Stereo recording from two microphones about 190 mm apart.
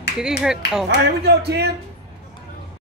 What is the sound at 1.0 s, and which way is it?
Speech, 60° right (ahead or behind).